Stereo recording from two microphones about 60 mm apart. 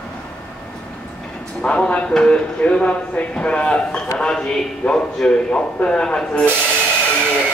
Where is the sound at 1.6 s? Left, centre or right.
Centre.